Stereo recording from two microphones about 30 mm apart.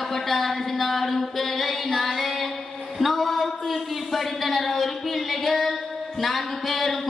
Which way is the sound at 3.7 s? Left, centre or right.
Centre.